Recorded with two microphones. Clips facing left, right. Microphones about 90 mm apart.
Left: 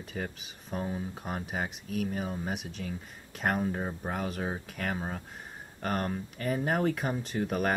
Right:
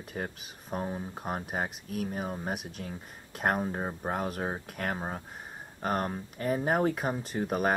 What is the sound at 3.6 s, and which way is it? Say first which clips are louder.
Speech: even; 20° right (ahead or behind).